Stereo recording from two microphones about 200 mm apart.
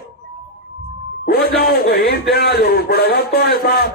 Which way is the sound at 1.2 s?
50° left (ahead or behind).